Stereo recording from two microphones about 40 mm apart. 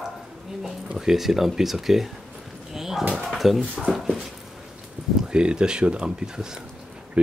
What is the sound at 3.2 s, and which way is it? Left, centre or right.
Speech, centre.